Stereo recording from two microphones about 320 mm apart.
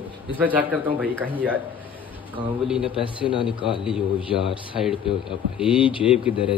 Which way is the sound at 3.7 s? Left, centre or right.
Centre.